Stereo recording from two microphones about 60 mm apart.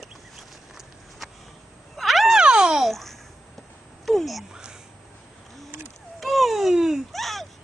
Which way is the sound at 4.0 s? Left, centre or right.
Centre.